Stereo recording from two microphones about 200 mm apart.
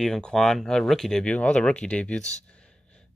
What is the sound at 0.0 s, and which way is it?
Speech, 5° left (ahead or behind).